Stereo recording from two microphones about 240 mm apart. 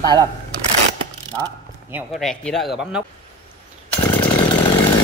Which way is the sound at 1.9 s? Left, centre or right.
Centre.